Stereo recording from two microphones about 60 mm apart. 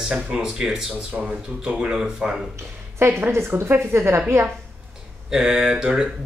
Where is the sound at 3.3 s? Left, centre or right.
Right.